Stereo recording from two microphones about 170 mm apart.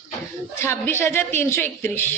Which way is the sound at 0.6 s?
15° left (ahead or behind).